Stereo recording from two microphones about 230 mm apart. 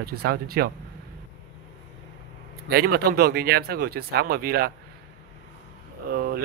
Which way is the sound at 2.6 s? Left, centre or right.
Right.